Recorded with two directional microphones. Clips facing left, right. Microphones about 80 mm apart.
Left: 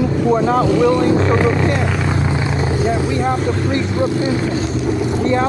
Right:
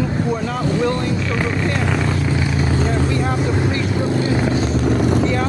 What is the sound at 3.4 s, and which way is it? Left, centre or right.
Speech, centre.